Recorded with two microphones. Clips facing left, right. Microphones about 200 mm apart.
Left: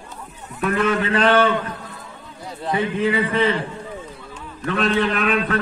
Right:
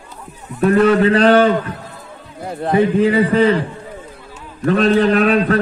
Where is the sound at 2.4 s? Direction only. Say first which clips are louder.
Right 8 dB; 55° right (ahead or behind).